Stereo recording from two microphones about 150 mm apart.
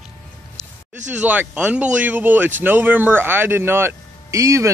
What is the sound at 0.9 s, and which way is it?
Speech, 55° right (ahead or behind).